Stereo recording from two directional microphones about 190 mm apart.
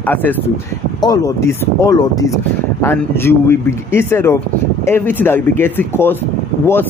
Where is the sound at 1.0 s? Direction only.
20° left (ahead or behind).